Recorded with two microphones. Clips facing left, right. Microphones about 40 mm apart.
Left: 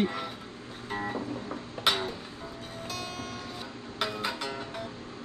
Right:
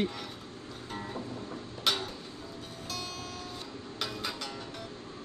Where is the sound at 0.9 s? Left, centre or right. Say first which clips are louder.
Left 6 dB; left.